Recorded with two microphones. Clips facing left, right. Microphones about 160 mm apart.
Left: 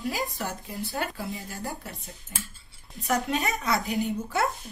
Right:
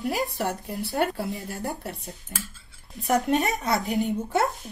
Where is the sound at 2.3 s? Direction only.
55° right (ahead or behind).